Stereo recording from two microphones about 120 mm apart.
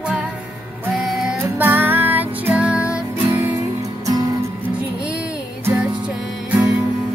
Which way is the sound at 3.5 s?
30° right (ahead or behind).